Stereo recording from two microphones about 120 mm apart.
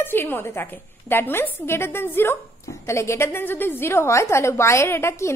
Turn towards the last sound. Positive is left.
turn(degrees=20)  # may be behind; listen again after turning